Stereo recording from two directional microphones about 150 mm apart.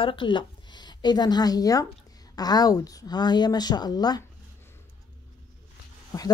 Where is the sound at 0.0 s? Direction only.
35° left (ahead or behind).